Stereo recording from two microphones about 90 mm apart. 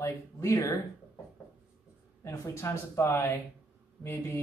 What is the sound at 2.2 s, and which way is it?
Speech, 30° left (ahead or behind).